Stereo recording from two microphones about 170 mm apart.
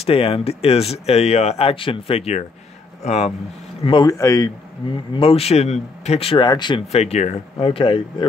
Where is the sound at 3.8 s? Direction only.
25° left (ahead or behind).